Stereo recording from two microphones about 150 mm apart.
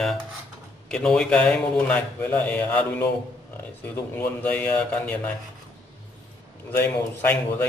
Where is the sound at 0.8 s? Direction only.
5° left (ahead or behind).